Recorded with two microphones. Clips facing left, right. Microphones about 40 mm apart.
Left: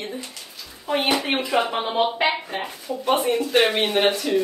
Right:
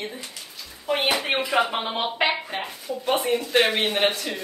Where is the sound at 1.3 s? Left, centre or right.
Centre.